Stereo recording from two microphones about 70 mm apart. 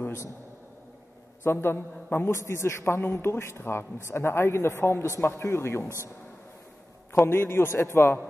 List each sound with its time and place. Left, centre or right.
0.0 s a sound: left
1.4 s a man's voice: left
2.3 s a man's voice: left
7.2 s a man's voice: left